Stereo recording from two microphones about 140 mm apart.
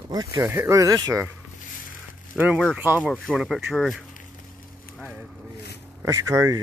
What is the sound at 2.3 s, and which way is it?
Speech, 5° right (ahead or behind).